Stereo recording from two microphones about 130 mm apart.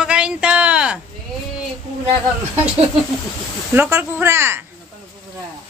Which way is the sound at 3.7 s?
20° right (ahead or behind).